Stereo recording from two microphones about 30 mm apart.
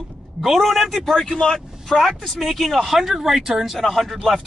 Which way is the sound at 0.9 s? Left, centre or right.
Centre.